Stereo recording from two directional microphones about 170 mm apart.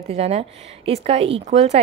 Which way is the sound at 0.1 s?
40° right (ahead or behind).